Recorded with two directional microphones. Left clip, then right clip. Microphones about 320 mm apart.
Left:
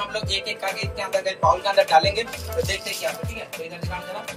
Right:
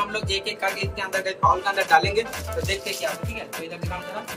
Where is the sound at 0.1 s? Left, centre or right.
Right.